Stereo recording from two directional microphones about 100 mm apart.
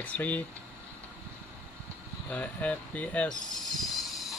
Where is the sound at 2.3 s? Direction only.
15° left (ahead or behind).